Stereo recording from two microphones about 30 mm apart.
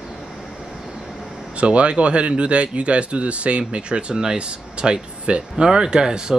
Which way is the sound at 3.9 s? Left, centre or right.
Right.